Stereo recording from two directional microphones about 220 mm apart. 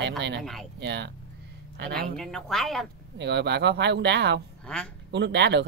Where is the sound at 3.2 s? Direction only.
50° right (ahead or behind).